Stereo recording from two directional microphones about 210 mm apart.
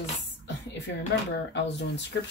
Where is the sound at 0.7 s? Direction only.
55° left (ahead or behind).